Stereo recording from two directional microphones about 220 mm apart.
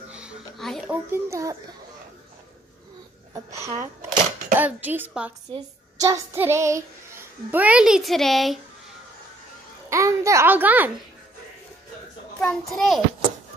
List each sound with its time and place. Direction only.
0.1 s a sound: 5° right (ahead or behind)
1.1 s child singing: 15° right (ahead or behind)
3.3 s speech: 15° right (ahead or behind)
4.6 s child singing: 5° right (ahead or behind)
7.5 s a child's voice: 5° right (ahead or behind)
9.8 s child singing: 15° right (ahead or behind)
12.4 s a child's voice: centre (ahead or behind)